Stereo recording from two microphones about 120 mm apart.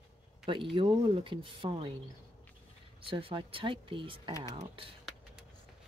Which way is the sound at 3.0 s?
45° right (ahead or behind).